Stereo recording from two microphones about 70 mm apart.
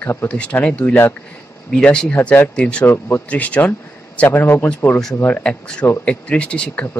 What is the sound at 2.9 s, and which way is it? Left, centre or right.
Speech, left.